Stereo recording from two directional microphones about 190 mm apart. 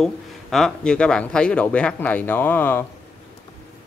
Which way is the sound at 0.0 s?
Centre (ahead or behind).